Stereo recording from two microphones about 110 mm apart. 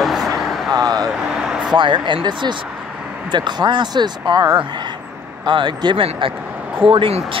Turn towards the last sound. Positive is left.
turn(degrees=-50)  # may be behind; listen again after turning